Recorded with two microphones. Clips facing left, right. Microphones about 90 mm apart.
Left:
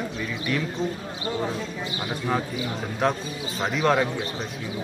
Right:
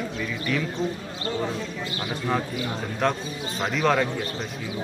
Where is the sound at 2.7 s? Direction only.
5° left (ahead or behind).